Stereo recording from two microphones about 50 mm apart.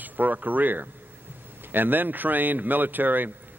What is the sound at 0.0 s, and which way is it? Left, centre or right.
Speech, right.